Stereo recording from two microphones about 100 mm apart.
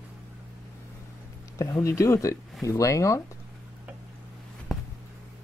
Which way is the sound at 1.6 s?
30° left (ahead or behind).